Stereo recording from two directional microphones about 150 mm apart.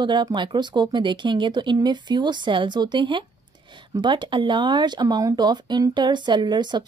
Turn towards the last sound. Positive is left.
turn(degrees=-30)  # may be behind; listen again after turning